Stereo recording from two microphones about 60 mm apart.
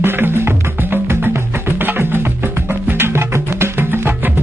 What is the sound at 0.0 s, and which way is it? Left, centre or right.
Music, right.